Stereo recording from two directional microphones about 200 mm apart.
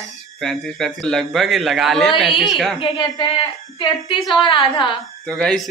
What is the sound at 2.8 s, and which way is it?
Speech, 20° left (ahead or behind).